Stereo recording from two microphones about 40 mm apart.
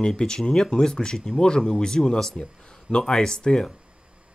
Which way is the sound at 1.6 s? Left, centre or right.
Centre.